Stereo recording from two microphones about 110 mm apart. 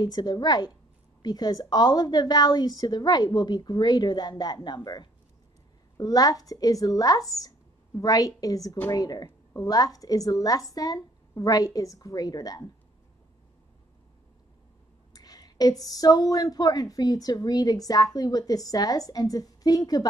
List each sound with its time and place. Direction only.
0.0 s a woman's voice: 40° left (ahead or behind)
15.1 s a sound: 35° left (ahead or behind)
15.8 s a woman's voice: 35° left (ahead or behind)